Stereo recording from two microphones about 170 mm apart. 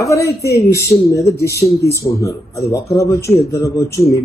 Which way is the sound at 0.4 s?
20° left (ahead or behind).